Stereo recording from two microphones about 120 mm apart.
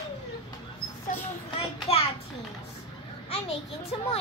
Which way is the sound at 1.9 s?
55° left (ahead or behind).